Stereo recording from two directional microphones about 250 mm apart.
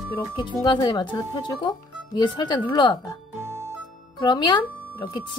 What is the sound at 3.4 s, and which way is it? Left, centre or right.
Music, centre.